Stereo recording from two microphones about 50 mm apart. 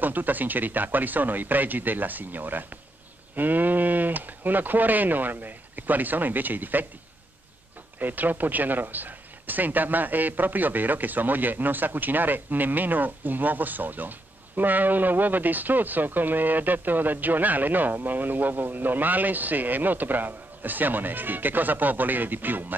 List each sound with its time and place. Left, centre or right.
0.0 s speech: right
8.0 s speech: right